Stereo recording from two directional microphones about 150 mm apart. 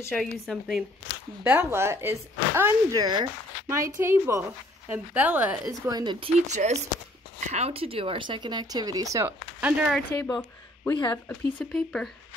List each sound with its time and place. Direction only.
0.1 s speech: centre (ahead or behind)
1.4 s speech: 15° right (ahead or behind)
5.9 s speech: 30° right (ahead or behind)
6.4 s speech: 50° right (ahead or behind); by 9.3 s 20° right (ahead or behind)
9.6 s speech: 10° right (ahead or behind)
9.9 s speech: 10° left (ahead or behind)